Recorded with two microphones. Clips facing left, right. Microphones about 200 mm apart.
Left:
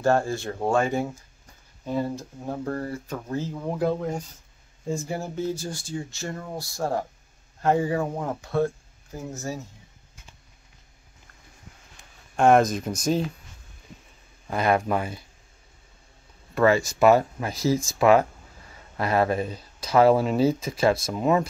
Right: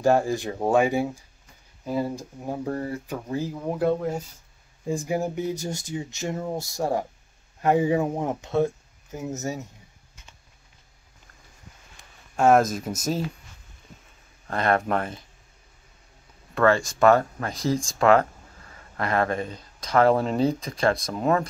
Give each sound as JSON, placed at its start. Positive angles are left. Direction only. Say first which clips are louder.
{"t": 0.0, "sound": "speech", "louder": "right 2 dB", "side_deg": -15}
{"t": 4.8, "sound": "speech", "louder": "right 4 dB", "side_deg": -15}
{"t": 12.4, "sound": "speech", "louder": "left 1 dB", "side_deg": -5}
{"t": 14.5, "sound": "speech", "louder": "left 1 dB", "side_deg": 5}
{"t": 16.5, "sound": "speech", "louder": "left 1 dB", "side_deg": 5}